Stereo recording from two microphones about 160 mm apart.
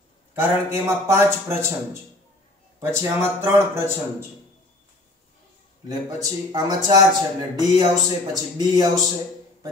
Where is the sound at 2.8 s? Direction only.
20° right (ahead or behind).